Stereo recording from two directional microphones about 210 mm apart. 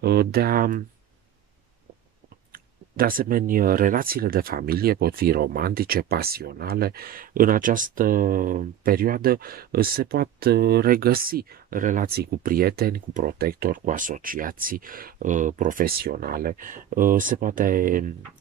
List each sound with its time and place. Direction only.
0.0 s speech: 50° right (ahead or behind)
2.5 s speech: 45° right (ahead or behind)